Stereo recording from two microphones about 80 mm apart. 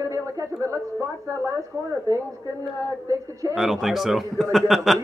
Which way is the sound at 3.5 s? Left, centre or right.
Centre.